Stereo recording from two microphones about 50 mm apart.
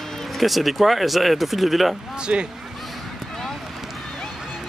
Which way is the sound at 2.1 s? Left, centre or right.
Centre.